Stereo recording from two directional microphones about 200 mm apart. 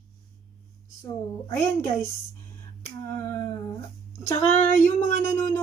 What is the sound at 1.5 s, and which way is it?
Speech, 15° left (ahead or behind).